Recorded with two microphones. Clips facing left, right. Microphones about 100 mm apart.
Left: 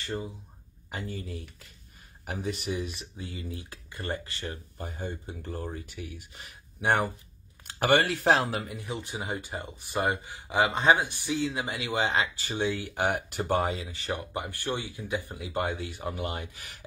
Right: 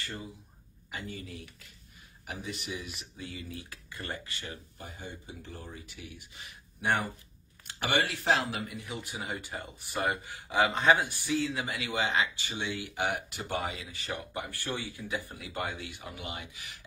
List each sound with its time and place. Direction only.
0.9 s speech: 35° left (ahead or behind)
8.6 s speech: 35° left (ahead or behind)
13.7 s speech: 30° left (ahead or behind); by 16.8 s 50° left (ahead or behind)